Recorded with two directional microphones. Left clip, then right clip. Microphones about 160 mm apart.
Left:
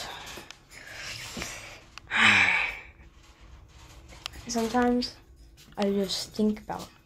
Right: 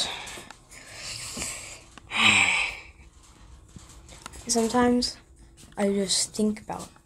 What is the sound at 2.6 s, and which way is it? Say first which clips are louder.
Sigh: right 1 dB; 20° right (ahead or behind).